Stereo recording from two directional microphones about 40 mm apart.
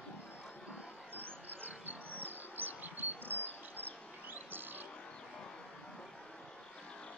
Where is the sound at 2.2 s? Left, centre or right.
Right.